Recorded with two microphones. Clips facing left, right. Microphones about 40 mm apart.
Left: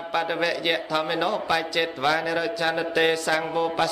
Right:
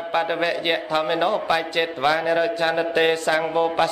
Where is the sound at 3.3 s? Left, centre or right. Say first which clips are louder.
Right 3 dB; centre.